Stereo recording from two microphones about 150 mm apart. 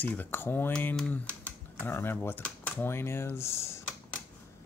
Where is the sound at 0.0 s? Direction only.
10° left (ahead or behind).